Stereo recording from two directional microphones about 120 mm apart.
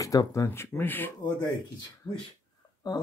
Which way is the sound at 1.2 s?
35° left (ahead or behind).